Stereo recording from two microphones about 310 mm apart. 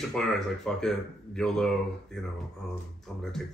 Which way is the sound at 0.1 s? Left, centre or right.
Centre.